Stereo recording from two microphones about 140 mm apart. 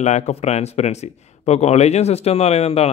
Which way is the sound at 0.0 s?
50° left (ahead or behind).